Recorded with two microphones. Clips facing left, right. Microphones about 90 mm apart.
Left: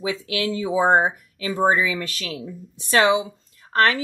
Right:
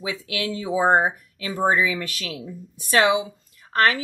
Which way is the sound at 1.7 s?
40° left (ahead or behind).